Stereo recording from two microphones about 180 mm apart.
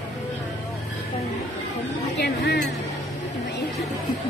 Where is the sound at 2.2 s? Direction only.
65° left (ahead or behind).